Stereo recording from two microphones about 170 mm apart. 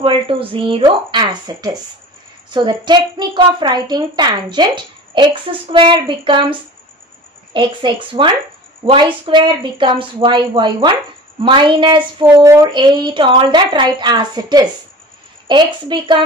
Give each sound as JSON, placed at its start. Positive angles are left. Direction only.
{"t": 0.0, "sound": "a woman's voice", "side_deg": -30}